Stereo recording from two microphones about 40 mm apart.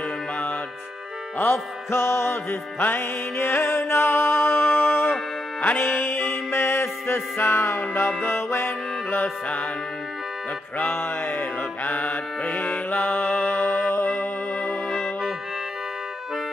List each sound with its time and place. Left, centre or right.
1.4 s music: left
2.8 s music: left
5.6 s music: left
6.5 s music: left
8.3 s music: left
11.0 s mantra: left
11.9 s mantra: left
13.0 s music: left
13.3 s music: left
14.6 s music: centre